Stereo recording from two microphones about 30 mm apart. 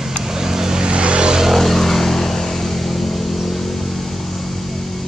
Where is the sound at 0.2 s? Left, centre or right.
Centre.